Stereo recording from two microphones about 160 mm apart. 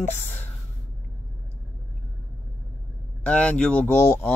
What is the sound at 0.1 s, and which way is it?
Speech, 10° left (ahead or behind).